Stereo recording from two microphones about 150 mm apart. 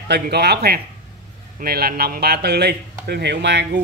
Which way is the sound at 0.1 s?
90° right.